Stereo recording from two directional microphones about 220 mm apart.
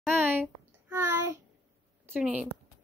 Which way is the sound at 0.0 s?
10° right (ahead or behind).